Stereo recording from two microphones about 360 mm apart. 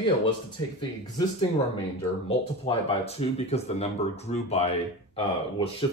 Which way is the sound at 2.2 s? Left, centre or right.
Centre.